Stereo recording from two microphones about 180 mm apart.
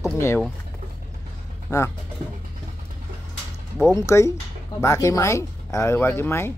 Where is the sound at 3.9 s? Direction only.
15° left (ahead or behind).